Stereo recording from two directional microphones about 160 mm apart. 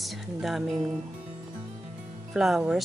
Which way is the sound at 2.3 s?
5° right (ahead or behind).